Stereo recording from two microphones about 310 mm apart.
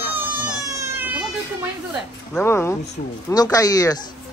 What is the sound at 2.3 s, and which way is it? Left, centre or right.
Speech, centre.